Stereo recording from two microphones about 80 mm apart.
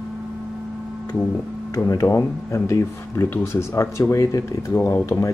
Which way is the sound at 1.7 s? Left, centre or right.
Left.